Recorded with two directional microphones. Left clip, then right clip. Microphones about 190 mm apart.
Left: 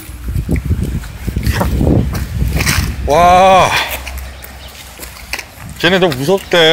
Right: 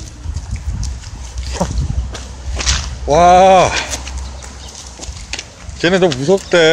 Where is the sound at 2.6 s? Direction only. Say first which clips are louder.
Left 2 dB; 5° left (ahead or behind).